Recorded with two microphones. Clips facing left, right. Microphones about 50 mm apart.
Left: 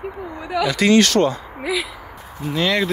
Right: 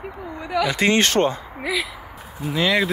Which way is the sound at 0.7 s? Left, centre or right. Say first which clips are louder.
Left 5 dB; right.